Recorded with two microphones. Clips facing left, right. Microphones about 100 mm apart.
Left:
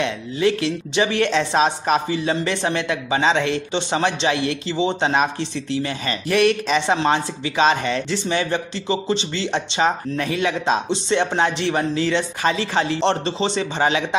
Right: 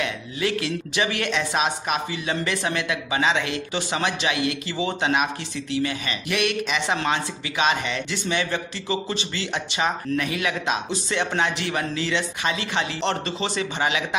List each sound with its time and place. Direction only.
0.0 s a woman's voice: 30° left (ahead or behind)